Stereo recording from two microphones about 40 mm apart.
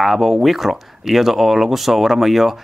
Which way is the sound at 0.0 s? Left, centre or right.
Centre.